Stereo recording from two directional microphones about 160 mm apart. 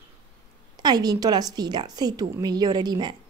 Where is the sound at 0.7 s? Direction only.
25° right (ahead or behind).